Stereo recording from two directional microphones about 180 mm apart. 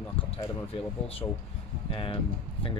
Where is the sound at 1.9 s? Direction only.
30° left (ahead or behind).